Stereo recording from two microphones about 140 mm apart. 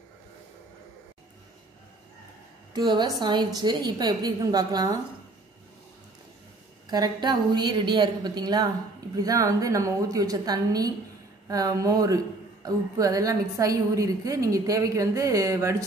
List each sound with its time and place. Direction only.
2.7 s a woman's voice: 30° right (ahead or behind)
6.9 s a woman's voice: 30° right (ahead or behind)